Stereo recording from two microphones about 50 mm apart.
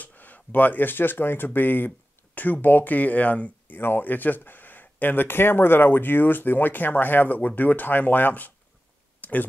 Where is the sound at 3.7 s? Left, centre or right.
Left.